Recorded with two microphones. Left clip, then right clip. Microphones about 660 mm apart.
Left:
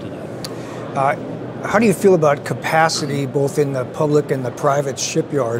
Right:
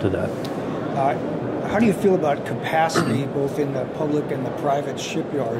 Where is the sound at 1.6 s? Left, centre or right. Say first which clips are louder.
Left 6 dB; left.